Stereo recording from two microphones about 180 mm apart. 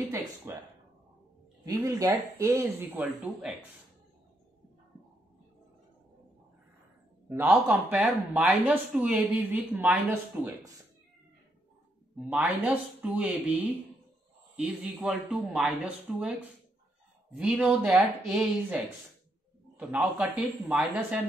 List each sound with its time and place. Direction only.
0.1 s speech: 15° right (ahead or behind)
1.7 s speech: 20° right (ahead or behind)
7.2 s speech: 10° right (ahead or behind)
12.2 s speech: 5° right (ahead or behind)